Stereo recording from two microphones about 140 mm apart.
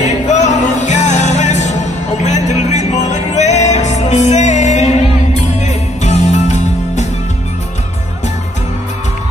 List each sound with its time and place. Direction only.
0.0 s music: 60° left (ahead or behind)